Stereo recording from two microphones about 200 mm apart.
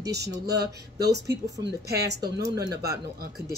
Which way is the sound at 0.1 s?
55° right (ahead or behind).